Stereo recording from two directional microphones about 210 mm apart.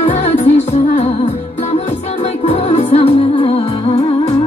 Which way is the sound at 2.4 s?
30° left (ahead or behind).